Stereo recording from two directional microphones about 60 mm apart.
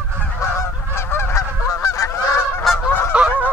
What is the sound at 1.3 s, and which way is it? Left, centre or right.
Goose, left.